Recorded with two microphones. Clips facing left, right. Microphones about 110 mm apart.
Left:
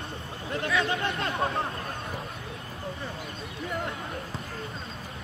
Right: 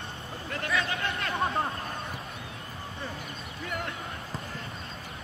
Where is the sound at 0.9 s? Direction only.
25° left (ahead or behind).